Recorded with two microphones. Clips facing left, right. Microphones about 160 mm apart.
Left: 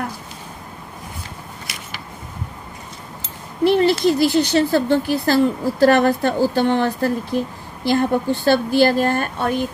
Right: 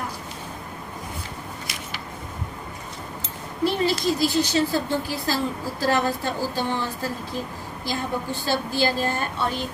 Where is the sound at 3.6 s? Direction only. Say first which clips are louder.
Left 8 dB; 60° left (ahead or behind).